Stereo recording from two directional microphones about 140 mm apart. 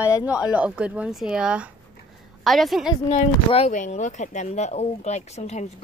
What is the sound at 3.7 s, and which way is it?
Speech, 60° left (ahead or behind).